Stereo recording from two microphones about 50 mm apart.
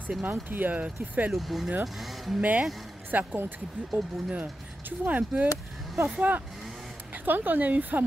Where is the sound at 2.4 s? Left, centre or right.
Right.